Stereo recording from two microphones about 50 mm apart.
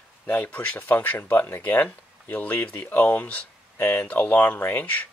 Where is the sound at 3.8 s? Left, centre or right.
Left.